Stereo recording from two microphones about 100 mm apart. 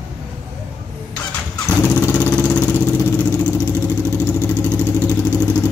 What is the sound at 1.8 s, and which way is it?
Vehicle, 20° left (ahead or behind).